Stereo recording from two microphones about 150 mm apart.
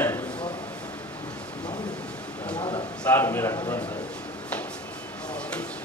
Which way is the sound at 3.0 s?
15° left (ahead or behind).